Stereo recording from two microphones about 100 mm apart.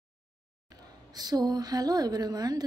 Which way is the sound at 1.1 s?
40° right (ahead or behind).